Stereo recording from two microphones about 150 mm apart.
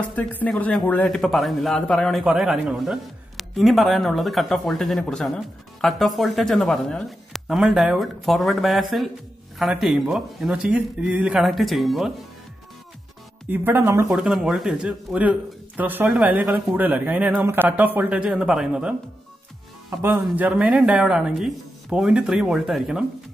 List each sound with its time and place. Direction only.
0.1 s speech: 10° left (ahead or behind)
13.5 s speech: 15° right (ahead or behind)
14.0 s speech: 5° right (ahead or behind)
20.0 s speech: 15° right (ahead or behind)